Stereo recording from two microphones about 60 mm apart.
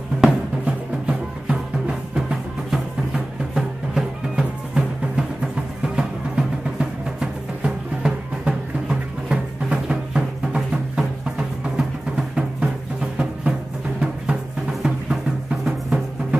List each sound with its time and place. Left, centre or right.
0.2 s music: centre